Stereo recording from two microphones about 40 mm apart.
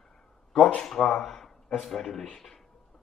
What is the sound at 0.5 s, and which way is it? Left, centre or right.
Speech, left.